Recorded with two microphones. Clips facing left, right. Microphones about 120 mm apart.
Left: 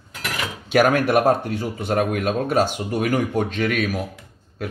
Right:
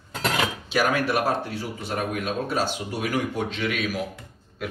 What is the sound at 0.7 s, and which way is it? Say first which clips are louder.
Speech: left 8 dB; 55° left (ahead or behind).